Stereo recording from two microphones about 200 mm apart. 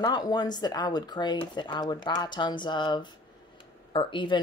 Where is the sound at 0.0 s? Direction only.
20° left (ahead or behind).